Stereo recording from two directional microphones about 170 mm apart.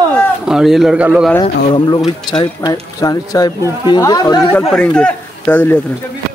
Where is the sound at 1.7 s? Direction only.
30° left (ahead or behind).